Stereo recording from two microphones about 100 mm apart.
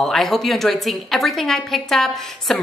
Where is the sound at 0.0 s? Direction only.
5° left (ahead or behind).